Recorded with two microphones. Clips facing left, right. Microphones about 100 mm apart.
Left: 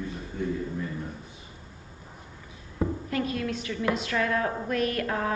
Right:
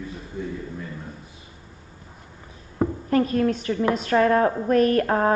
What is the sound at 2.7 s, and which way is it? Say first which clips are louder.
A woman's voice: right 7 dB; 40° right (ahead or behind).